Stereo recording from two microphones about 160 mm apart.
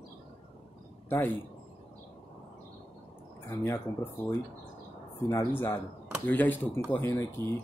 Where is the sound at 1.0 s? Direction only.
10° left (ahead or behind).